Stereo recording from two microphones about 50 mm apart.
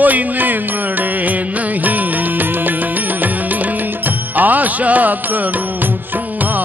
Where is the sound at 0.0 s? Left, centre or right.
Right.